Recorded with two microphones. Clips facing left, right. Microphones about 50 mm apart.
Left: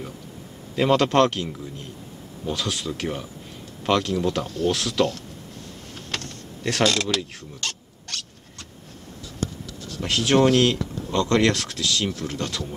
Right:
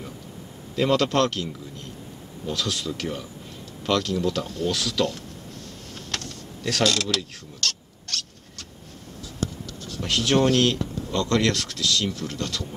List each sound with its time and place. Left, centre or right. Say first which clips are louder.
0.7 s speech: left 3 dB; centre
6.2 s mechanisms: left 2 dB; left
9.9 s speech: left 2 dB; centre